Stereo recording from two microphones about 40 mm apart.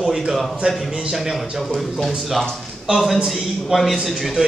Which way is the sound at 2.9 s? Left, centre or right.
Right.